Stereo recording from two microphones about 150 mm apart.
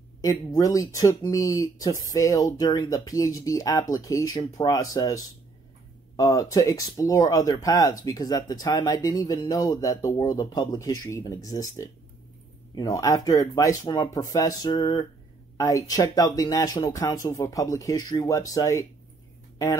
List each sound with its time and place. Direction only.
0.2 s speech: 25° left (ahead or behind)